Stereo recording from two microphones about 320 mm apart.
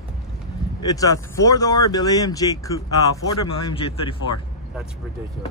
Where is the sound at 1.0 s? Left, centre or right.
Centre.